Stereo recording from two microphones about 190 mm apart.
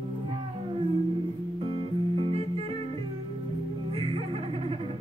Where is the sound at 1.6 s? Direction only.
30° right (ahead or behind).